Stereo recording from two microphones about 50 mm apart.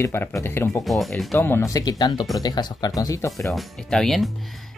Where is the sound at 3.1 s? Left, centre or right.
Left.